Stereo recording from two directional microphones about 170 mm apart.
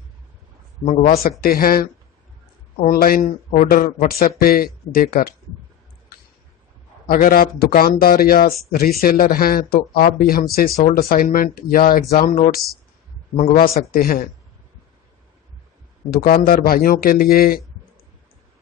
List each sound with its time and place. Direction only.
1.4 s speech: 60° left (ahead or behind)
7.1 s speech: 60° left (ahead or behind)
16.1 s speech: 60° left (ahead or behind)